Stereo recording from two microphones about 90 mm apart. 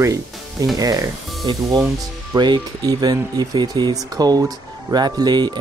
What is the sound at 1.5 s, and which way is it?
Speech, 60° right (ahead or behind).